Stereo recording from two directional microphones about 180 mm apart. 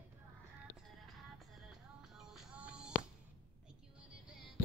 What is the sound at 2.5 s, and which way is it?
Music, 5° right (ahead or behind).